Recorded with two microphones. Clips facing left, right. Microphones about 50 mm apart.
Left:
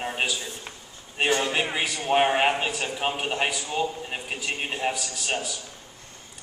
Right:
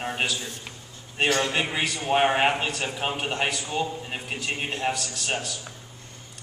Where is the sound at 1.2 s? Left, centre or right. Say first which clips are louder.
Even; centre.